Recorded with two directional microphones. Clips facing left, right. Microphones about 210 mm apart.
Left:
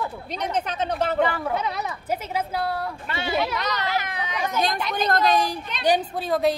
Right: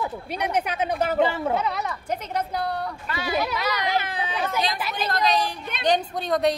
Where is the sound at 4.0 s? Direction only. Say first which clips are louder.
Right 2 dB; 30° right (ahead or behind).